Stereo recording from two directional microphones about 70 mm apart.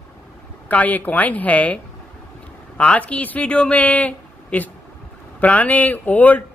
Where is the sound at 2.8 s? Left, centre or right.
Centre.